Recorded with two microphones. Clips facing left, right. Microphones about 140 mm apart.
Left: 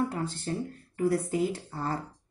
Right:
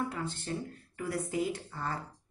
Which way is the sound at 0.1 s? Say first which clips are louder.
Left 4 dB; 35° left (ahead or behind).